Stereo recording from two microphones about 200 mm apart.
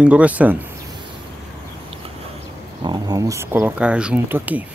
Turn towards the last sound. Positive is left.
turn(degrees=-10)  # may be behind; listen again after turning